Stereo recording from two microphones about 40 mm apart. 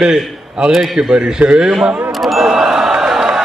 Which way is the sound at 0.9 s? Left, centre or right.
Centre.